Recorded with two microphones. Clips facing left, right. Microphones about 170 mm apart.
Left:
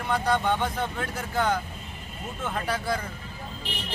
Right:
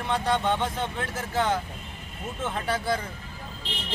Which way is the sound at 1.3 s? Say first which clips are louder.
Even; 25° right (ahead or behind).